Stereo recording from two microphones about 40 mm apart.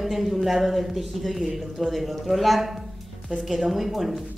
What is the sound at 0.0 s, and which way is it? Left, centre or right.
Speech, centre.